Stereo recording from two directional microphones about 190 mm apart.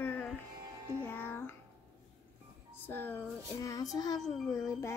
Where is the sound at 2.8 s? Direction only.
10° left (ahead or behind).